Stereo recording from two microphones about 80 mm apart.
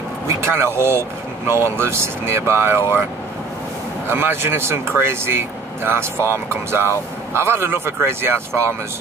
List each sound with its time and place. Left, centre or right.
0.4 s speech: right
4.1 s speech: right